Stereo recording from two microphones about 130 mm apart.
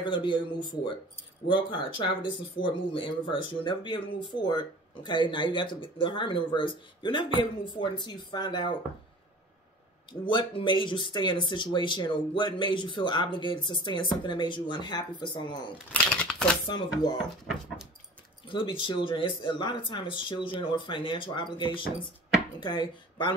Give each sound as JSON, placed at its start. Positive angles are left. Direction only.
{"t": 0.0, "sound": "speech", "side_deg": 35}
{"t": 10.2, "sound": "speech", "side_deg": 40}
{"t": 15.9, "sound": "speech", "side_deg": 10}
{"t": 18.5, "sound": "speech", "side_deg": 40}